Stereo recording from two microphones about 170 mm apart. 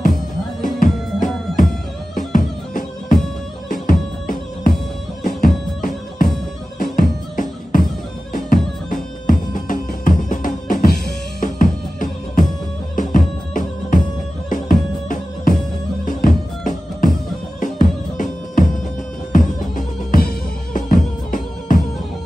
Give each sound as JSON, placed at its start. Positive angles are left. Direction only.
{"t": 0.0, "sound": "music", "side_deg": 50}
{"t": 5.8, "sound": "music", "side_deg": 50}